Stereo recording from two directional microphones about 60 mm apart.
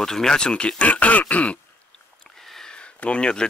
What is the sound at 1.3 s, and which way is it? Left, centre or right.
Throat clearing, left.